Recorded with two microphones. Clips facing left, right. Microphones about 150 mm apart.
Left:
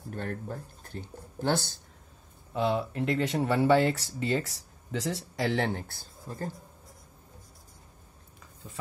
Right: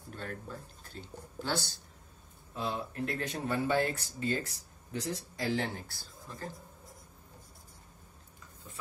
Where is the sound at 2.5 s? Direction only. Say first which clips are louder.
Left 8 dB; 90° left; by 6.5 s 55° left (ahead or behind).